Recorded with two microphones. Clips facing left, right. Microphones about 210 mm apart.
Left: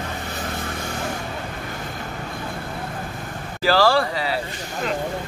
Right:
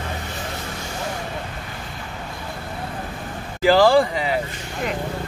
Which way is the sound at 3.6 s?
20° right (ahead or behind).